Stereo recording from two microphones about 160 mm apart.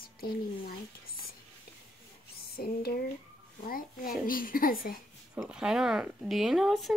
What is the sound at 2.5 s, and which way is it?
Speech, 70° left (ahead or behind).